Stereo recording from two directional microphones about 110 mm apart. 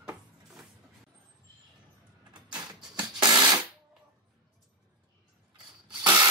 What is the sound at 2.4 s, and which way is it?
Music, 40° right (ahead or behind).